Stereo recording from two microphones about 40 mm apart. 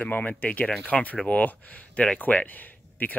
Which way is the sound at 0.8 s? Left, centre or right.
Left.